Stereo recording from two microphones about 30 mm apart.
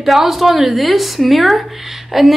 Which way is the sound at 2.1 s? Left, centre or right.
Centre.